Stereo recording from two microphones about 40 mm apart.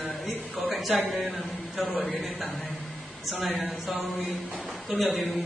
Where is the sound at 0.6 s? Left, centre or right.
Centre.